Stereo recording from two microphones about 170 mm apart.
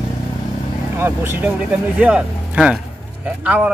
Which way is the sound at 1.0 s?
15° right (ahead or behind).